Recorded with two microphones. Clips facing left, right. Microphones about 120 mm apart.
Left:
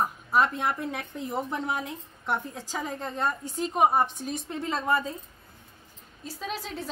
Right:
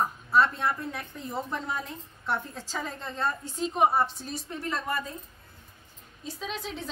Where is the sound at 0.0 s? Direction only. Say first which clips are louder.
Even; 15° left (ahead or behind).